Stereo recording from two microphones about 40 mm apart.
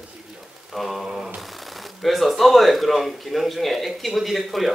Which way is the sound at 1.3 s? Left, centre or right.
Centre.